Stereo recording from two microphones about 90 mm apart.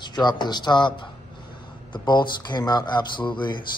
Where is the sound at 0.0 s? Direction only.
55° left (ahead or behind).